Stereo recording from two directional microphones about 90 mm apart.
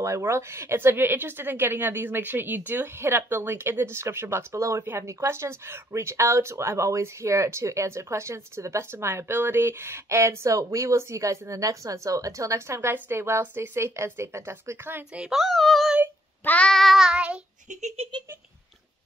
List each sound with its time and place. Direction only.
0.0 s a woman's voice: 30° right (ahead or behind)
15.1 s child singing: 5° right (ahead or behind)
17.9 s a sound: 90° right